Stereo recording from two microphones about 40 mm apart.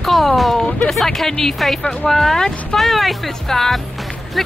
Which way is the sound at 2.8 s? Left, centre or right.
Centre.